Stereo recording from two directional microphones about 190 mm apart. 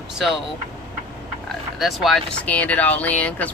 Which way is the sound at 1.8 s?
Centre (ahead or behind).